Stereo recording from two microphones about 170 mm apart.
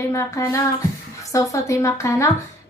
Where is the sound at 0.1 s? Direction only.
15° left (ahead or behind).